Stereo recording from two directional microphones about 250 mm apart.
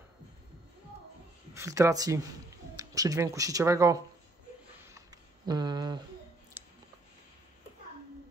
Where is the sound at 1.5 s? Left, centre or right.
Centre.